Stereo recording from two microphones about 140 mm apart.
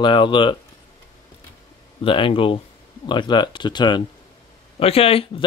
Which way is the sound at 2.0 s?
40° left (ahead or behind).